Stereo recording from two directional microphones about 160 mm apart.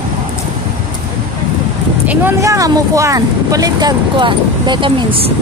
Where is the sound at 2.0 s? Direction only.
15° right (ahead or behind); by 5.3 s 35° right (ahead or behind).